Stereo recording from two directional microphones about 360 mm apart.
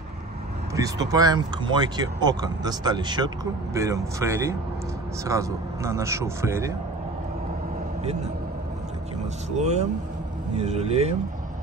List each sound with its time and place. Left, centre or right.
0.7 s speech: centre
9.6 s speech: centre